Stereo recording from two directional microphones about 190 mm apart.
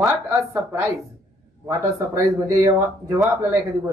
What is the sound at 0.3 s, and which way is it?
A woman's voice, 15° right (ahead or behind).